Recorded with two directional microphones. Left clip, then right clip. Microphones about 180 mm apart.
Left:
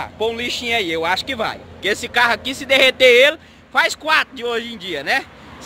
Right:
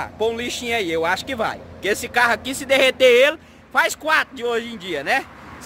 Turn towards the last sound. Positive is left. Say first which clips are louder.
# left 1 dB
turn(degrees=-5)  # may be behind; listen again after turning